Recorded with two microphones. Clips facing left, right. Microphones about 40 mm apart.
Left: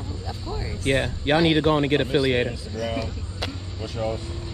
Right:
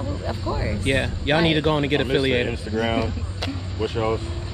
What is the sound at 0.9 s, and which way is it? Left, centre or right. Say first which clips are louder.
Speech: left 1 dB; right.